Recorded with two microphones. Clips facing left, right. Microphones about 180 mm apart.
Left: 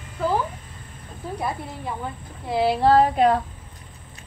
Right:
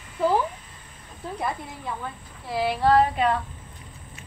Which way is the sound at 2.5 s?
25° left (ahead or behind).